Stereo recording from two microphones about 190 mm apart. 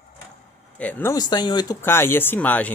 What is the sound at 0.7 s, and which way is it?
Speech, 10° left (ahead or behind).